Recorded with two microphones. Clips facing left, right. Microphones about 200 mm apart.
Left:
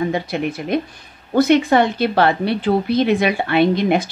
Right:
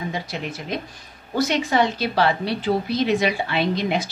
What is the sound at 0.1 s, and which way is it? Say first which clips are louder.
A woman's voice: left 8 dB; 55° left (ahead or behind).